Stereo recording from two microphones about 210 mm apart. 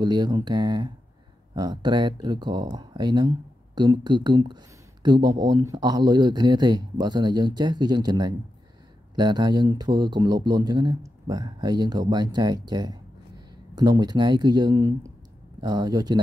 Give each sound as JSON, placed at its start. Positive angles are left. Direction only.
{"t": 0.0, "sound": "speech", "side_deg": -20}